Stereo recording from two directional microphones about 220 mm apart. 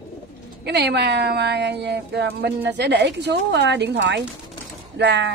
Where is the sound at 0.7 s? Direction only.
50° right (ahead or behind).